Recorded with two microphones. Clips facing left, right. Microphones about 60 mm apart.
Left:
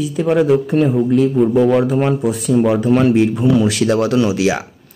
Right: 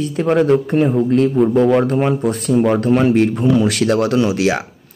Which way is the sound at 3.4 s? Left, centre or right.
Right.